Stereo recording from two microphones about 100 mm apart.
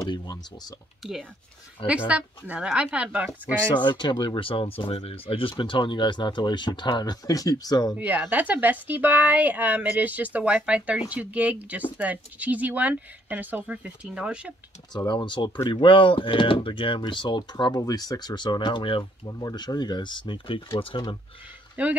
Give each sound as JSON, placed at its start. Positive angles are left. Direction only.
{"t": 0.0, "sound": "speech", "side_deg": 45}
{"t": 1.0, "sound": "speech", "side_deg": -5}
{"t": 3.7, "sound": "speech", "side_deg": 50}
{"t": 8.0, "sound": "speech", "side_deg": -15}
{"t": 15.0, "sound": "speech", "side_deg": 50}
{"t": 19.2, "sound": "speech", "side_deg": 40}
{"t": 21.8, "sound": "speech", "side_deg": -15}